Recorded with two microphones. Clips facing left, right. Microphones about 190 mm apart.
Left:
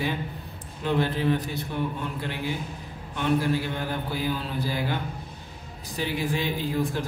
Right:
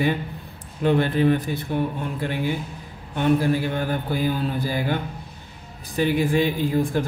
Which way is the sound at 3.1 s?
50° right (ahead or behind).